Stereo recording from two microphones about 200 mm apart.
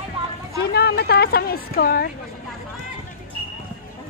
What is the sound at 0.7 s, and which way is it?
A woman's voice, 50° left (ahead or behind).